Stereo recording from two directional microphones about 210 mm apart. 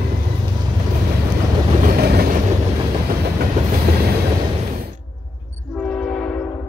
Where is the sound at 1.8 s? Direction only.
45° right (ahead or behind).